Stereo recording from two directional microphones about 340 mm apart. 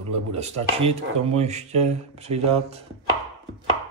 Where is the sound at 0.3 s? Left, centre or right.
Centre.